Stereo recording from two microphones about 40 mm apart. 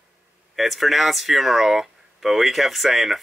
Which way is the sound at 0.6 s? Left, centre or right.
Centre.